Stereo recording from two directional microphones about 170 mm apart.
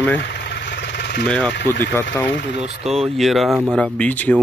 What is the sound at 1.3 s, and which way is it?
Speech, 5° left (ahead or behind).